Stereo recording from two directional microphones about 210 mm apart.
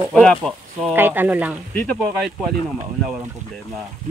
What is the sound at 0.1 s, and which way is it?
Speech, centre (ahead or behind).